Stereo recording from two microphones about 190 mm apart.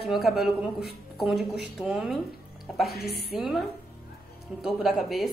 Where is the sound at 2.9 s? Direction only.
55° left (ahead or behind).